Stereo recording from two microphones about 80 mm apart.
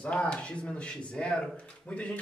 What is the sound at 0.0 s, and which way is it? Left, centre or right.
Speech, centre.